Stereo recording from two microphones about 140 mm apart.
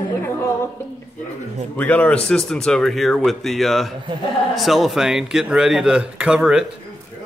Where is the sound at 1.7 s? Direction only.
10° left (ahead or behind); by 6.6 s 5° right (ahead or behind).